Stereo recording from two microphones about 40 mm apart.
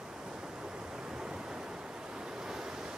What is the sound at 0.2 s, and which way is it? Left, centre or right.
Waves, centre.